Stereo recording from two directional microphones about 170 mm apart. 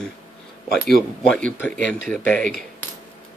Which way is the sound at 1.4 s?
5° left (ahead or behind).